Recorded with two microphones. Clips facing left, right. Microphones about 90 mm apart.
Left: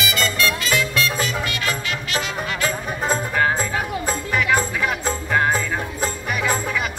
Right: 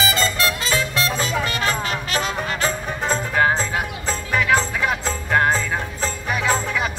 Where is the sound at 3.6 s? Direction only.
10° left (ahead or behind).